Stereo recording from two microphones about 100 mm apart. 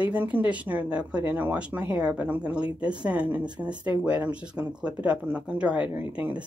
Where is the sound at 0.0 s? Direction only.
15° right (ahead or behind).